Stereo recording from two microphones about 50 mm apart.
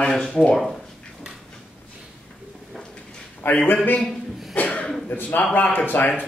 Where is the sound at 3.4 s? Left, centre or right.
Left.